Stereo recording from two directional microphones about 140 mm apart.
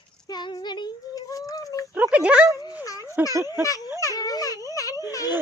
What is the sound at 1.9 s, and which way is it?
Speech, 10° right (ahead or behind).